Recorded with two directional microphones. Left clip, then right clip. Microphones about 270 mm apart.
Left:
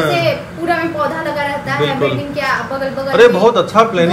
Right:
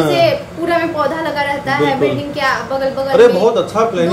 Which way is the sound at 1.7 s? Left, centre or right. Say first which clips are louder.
Right 2 dB; centre.